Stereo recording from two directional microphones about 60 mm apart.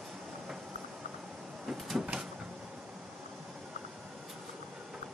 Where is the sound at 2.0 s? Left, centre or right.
Centre.